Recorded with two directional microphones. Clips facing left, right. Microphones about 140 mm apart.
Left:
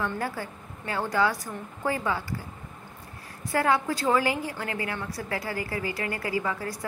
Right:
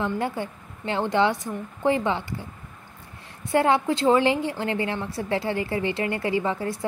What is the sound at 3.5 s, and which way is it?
A woman's voice, 25° right (ahead or behind).